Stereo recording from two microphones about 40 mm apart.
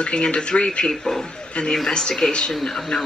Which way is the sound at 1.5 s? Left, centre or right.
Left.